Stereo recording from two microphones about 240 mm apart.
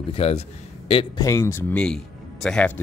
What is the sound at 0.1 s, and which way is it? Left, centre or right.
A man's voice, left.